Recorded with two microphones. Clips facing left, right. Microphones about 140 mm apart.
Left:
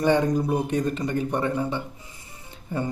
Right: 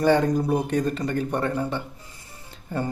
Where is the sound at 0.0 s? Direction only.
15° left (ahead or behind).